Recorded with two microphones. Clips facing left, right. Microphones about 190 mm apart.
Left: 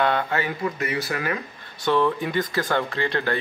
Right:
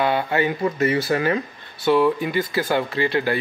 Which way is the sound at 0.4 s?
25° right (ahead or behind).